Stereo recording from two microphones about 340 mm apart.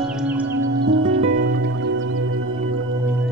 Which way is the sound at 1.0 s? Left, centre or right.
Right.